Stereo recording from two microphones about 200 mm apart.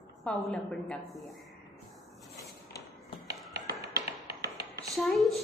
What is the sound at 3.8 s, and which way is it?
Tap, 50° right (ahead or behind).